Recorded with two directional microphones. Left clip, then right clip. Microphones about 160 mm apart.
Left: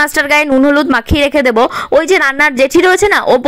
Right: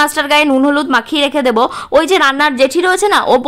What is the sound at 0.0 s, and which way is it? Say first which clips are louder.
A woman's voice: left 1 dB; 30° left (ahead or behind).